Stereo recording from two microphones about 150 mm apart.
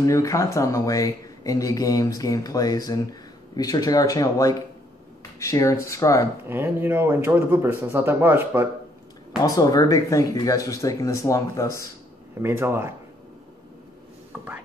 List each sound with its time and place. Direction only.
0.0 s speech: 20° left (ahead or behind)
6.4 s speech: 15° right (ahead or behind)
9.4 s speech: 25° left (ahead or behind)
12.4 s speech: 15° right (ahead or behind)
14.3 s speech: 10° right (ahead or behind)